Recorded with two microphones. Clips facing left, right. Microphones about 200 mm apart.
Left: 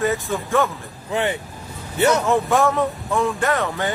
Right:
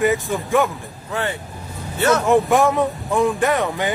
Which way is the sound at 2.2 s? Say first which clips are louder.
Right 3 dB; 15° right (ahead or behind).